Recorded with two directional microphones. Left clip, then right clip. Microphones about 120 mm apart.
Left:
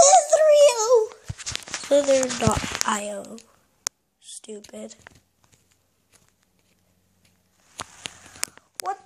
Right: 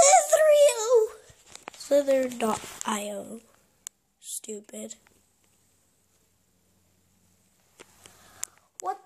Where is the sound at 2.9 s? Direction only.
35° right (ahead or behind).